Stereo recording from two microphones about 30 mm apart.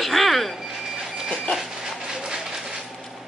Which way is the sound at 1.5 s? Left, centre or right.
Centre.